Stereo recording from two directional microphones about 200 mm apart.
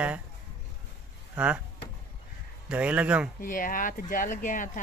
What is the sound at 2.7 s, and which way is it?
Speech, 5° right (ahead or behind).